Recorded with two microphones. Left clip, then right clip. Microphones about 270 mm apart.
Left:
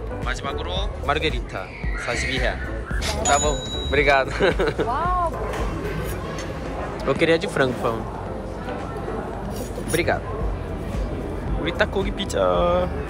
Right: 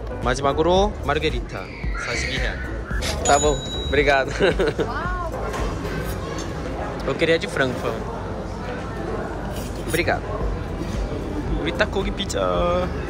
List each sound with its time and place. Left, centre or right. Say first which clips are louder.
0.2 s speech: right 9 dB; centre
1.0 s speech: even; centre
7.1 s speech: left 1 dB; centre
11.6 s speech: left 1 dB; centre